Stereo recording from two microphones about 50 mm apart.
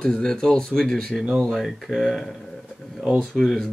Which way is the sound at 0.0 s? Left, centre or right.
Centre.